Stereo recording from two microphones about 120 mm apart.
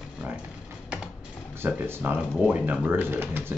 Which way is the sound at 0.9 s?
10° right (ahead or behind).